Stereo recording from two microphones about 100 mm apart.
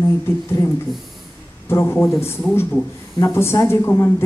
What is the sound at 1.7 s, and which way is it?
A woman's voice, 25° left (ahead or behind).